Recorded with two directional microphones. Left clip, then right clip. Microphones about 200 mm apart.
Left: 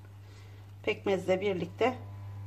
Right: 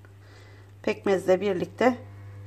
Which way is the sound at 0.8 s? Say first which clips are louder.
Right 5 dB; 35° right (ahead or behind).